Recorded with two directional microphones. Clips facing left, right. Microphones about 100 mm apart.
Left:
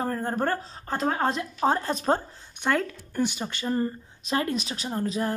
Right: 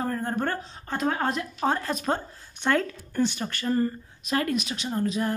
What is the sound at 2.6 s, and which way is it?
A woman's voice, 10° left (ahead or behind).